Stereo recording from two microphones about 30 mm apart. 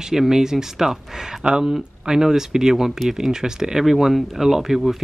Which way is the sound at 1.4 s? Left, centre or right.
Right.